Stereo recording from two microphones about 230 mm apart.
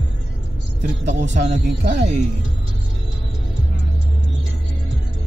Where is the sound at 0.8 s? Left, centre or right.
Right.